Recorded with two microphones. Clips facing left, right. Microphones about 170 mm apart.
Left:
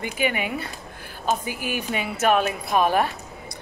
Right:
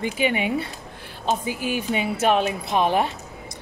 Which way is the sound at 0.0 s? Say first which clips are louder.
Right 2 dB; 25° right (ahead or behind).